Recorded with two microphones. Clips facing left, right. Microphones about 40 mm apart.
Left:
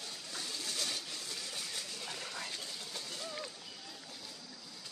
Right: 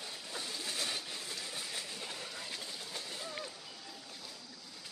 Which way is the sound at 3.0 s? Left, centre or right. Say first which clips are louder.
Left 1 dB; centre.